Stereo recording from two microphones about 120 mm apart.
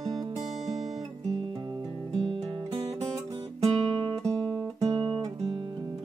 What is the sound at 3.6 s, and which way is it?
Guitar, 45° right (ahead or behind).